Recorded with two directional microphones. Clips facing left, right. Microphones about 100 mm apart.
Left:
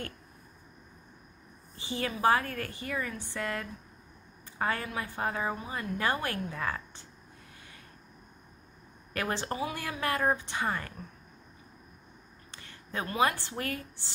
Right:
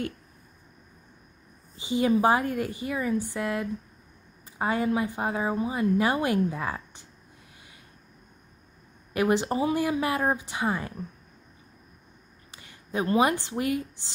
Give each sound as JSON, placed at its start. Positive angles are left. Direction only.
{"t": 1.8, "sound": "speech", "side_deg": -15}
{"t": 9.1, "sound": "speech", "side_deg": -15}
{"t": 12.4, "sound": "a sound", "side_deg": -15}
{"t": 13.0, "sound": "speech", "side_deg": -20}